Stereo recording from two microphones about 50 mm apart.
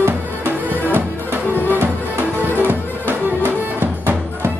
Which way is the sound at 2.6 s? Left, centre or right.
Right.